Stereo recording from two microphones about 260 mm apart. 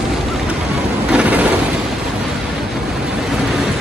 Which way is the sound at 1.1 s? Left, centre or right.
Centre.